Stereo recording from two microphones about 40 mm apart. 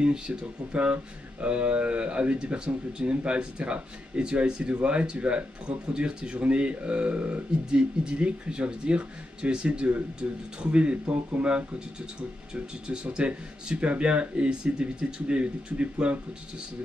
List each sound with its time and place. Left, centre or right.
0.4 s speech: right
7.7 s speech: right
12.8 s speech: right